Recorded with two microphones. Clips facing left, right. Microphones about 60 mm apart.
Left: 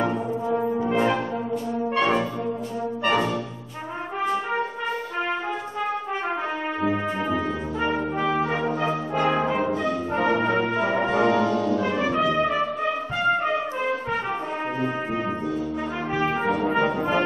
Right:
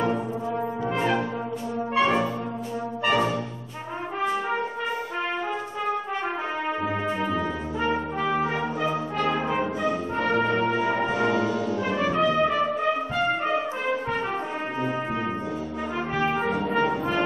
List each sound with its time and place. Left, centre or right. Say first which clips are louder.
0.0 s brass instrument: left 1 dB; centre
6.8 s brass instrument: left 2 dB; centre
8.8 s brass instrument: left 1 dB; left
9.4 s brass instrument: left 2 dB; centre
10.1 s brass instrument: left 3 dB; centre
11.2 s music: left 3 dB; centre
12.2 s brass instrument: right 2 dB; centre
16.2 s brass instrument: left 1 dB; centre